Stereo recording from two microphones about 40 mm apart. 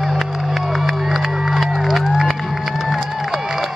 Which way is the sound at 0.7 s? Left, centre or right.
Centre.